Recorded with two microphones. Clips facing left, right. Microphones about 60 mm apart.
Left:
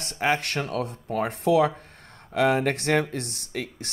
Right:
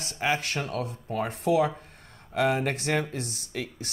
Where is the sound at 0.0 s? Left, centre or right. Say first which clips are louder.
Left 3 dB; left.